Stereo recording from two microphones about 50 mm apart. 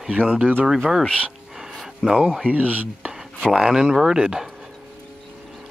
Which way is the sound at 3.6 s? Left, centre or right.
Centre.